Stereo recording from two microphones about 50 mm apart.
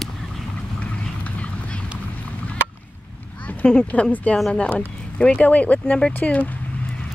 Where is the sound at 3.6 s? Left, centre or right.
Left.